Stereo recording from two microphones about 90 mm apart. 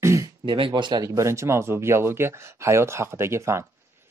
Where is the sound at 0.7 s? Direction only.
50° right (ahead or behind).